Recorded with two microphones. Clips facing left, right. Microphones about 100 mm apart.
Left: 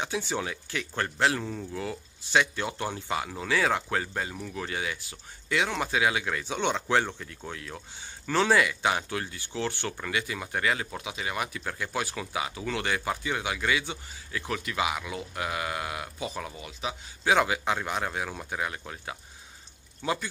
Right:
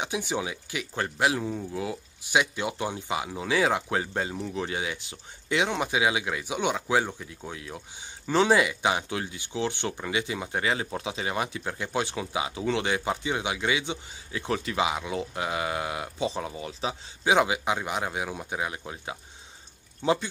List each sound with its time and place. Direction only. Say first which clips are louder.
0.0 s speech: right 1 dB; 15° right (ahead or behind)
17.2 s speech: right 1 dB; 15° right (ahead or behind)